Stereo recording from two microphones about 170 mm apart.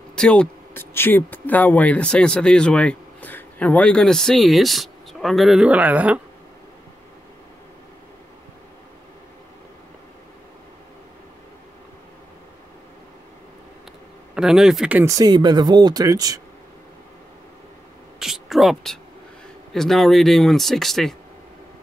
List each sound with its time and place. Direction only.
0.1 s speech: 5° left (ahead or behind)
14.3 s speech: 5° right (ahead or behind); by 16.3 s 20° right (ahead or behind)
18.2 s speech: centre (ahead or behind)